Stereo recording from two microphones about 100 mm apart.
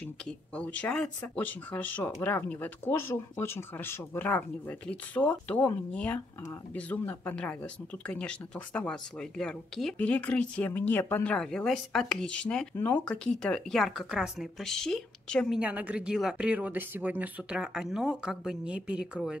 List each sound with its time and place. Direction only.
0.6 s speech: 15° left (ahead or behind)
11.3 s speech: 5° left (ahead or behind)
15.5 s speech: 15° right (ahead or behind)